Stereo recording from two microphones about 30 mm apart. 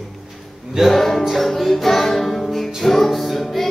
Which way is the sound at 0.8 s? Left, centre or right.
Centre.